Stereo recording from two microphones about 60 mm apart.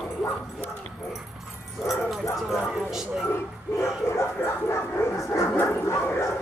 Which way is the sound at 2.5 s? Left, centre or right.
Centre.